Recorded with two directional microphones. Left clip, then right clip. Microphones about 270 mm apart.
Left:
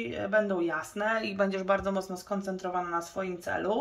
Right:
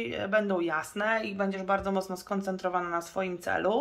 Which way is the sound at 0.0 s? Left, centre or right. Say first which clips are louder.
Even; centre.